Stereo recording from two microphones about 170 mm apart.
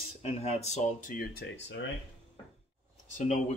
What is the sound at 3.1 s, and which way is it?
Speech, 45° left (ahead or behind).